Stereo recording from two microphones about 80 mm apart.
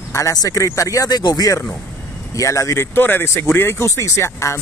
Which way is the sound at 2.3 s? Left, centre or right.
Left.